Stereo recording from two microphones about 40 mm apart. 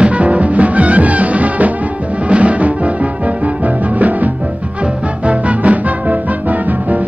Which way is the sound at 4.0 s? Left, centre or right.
Right.